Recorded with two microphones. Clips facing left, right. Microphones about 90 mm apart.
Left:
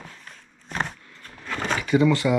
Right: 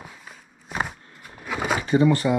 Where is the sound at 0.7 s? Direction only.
5° right (ahead or behind).